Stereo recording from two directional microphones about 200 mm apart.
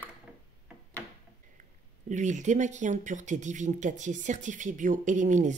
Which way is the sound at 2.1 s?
35° right (ahead or behind).